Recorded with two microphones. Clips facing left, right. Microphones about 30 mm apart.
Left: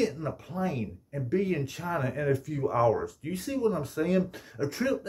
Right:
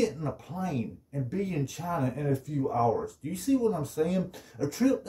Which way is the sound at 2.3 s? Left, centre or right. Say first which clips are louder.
Left 1 dB; left.